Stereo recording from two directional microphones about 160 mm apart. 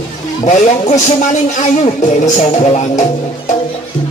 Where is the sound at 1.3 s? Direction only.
50° left (ahead or behind).